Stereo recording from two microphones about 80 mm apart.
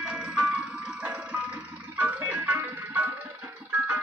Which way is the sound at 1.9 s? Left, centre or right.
Centre.